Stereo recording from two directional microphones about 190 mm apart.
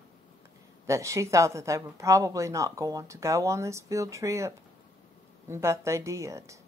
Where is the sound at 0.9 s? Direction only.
15° right (ahead or behind).